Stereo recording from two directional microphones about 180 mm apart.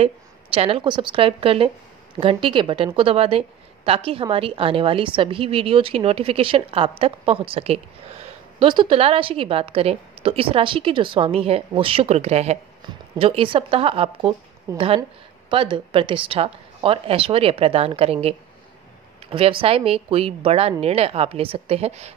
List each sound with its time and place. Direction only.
0.0 s a woman's voice: 30° right (ahead or behind)
15.5 s a woman's voice: 30° right (ahead or behind)
19.6 s a woman's voice: 30° right (ahead or behind)